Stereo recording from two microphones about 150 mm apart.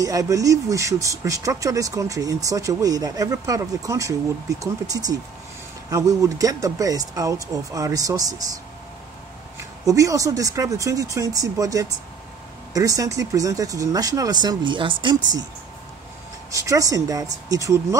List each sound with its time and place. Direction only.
0.0 s speech: 20° right (ahead or behind)
9.8 s speech: 20° right (ahead or behind)
16.4 s speech: 20° right (ahead or behind)